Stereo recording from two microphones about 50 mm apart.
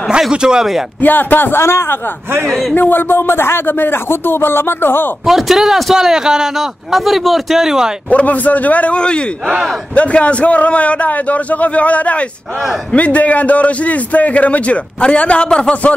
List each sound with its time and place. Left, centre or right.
0.3 s a man's voice: centre
1.0 s speech: left
2.4 s speech: centre
2.7 s speech: left
5.2 s a man's voice: centre
8.1 s a man's voice: left